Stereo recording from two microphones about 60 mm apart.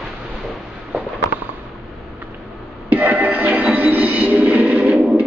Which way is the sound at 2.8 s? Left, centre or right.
Right.